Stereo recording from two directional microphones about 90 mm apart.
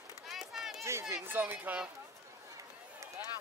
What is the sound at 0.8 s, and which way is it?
Speech, 25° right (ahead or behind).